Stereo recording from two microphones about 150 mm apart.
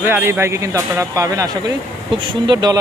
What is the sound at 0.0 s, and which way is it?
Speech, 15° right (ahead or behind).